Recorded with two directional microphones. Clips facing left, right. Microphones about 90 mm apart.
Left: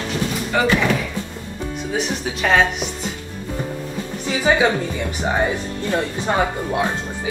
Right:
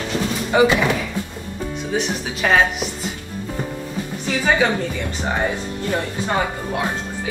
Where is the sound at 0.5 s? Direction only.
20° right (ahead or behind).